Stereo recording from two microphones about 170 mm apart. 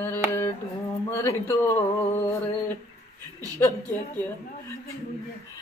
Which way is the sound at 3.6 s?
15° left (ahead or behind).